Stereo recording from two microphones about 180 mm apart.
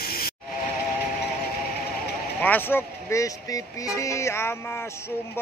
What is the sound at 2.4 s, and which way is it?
Speech, 10° left (ahead or behind).